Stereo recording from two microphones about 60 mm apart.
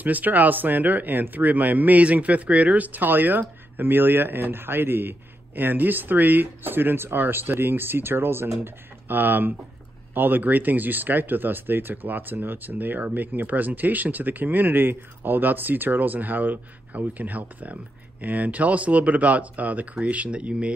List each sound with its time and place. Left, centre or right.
0.0 s speech: right